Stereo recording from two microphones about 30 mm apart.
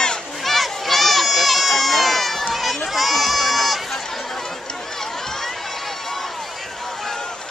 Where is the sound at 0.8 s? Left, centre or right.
Centre.